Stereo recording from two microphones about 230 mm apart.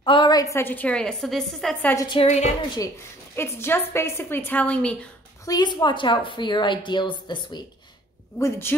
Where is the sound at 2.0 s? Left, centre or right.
Left.